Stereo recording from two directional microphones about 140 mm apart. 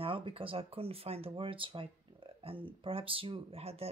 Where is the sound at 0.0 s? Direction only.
40° right (ahead or behind).